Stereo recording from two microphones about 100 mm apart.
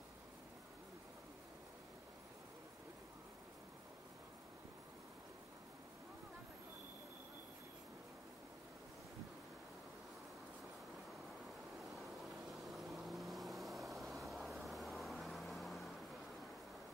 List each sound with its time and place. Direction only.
12.5 s vehicle: centre (ahead or behind)